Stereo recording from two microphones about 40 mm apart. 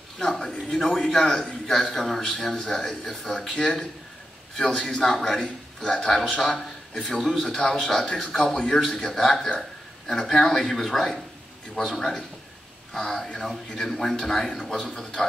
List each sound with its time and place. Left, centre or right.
0.5 s a man's voice: centre
4.7 s a man's voice: left
6.4 s a sound: centre
7.1 s a man's voice: centre
7.3 s a man's voice: left
7.6 s a man's voice: centre